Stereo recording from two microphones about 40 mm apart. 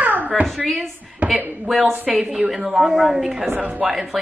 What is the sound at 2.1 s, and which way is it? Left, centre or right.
A woman's voice, centre.